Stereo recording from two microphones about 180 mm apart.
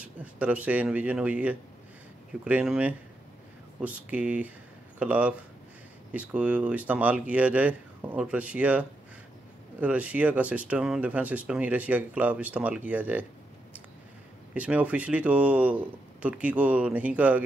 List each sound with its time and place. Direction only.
0.0 s speech: 10° right (ahead or behind)
14.5 s speech: 5° right (ahead or behind)